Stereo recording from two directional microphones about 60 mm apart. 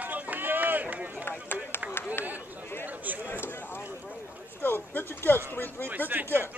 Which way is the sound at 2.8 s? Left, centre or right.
Right.